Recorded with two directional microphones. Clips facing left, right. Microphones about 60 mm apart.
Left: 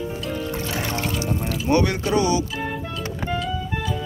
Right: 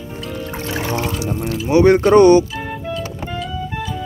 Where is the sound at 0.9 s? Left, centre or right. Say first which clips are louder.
Right 4 dB; centre.